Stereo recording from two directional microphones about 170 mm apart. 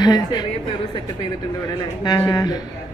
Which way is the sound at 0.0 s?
25° left (ahead or behind).